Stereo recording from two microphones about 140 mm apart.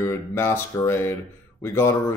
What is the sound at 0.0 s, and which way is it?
Speech, 15° left (ahead or behind).